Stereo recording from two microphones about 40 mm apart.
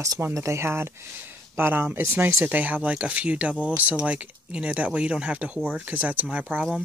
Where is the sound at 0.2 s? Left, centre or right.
Right.